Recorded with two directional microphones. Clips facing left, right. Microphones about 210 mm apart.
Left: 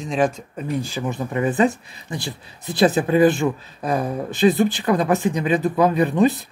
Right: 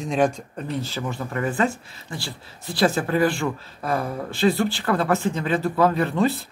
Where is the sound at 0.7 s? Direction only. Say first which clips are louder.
Left 4 dB; 15° left (ahead or behind).